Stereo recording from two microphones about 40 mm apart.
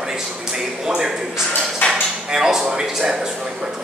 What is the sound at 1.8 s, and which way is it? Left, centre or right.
Cutlery, left.